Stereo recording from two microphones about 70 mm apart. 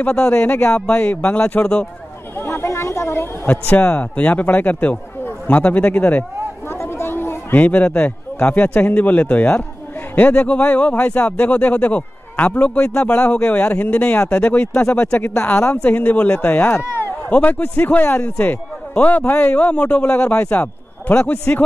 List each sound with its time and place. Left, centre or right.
0.0 s speech: centre
2.3 s a woman's voice: left
6.7 s a man's voice: left